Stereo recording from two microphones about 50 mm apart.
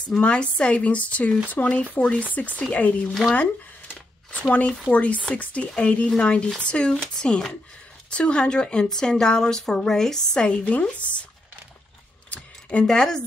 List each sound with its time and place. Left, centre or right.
0.2 s a woman's voice: left
1.6 s speech: left
2.0 s a woman's voice: left
3.3 s a sound: left
4.9 s a woman's voice: left
10.6 s a woman's voice: left
12.3 s a sound: left
12.8 s speech: centre